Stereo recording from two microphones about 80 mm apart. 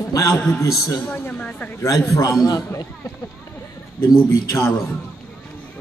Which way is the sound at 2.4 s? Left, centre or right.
Left.